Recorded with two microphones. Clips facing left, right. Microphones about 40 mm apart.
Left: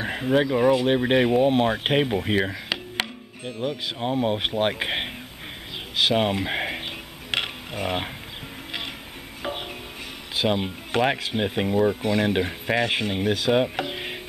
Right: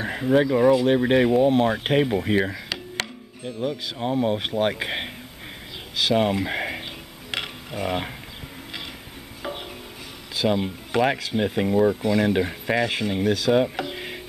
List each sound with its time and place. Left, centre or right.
0.0 s speech: centre
2.2 s music: centre
4.0 s speech: left
10.3 s speech: left
11.7 s speech: centre
12.0 s speech: left